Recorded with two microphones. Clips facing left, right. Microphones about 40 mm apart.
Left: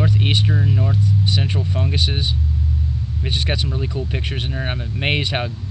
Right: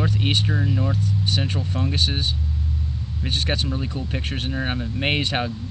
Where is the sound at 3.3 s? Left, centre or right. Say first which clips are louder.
Left 1 dB; left.